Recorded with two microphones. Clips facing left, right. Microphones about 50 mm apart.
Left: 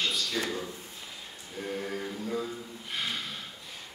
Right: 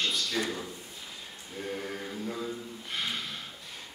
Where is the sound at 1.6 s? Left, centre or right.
Centre.